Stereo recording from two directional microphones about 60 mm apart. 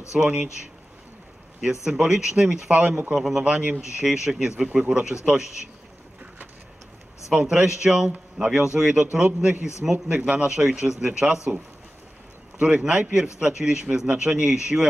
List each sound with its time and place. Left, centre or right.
0.1 s speech: centre
1.9 s a man's voice: centre
3.4 s a man's voice: centre
7.2 s a man's voice: centre
12.5 s a man's voice: centre